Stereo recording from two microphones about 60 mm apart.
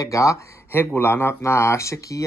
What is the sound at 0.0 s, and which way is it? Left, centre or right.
Speech, left.